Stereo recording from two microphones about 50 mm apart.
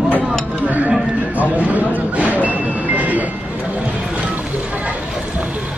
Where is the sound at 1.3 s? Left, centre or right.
Right.